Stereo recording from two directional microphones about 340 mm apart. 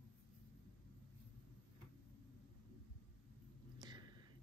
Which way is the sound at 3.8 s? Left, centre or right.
Centre.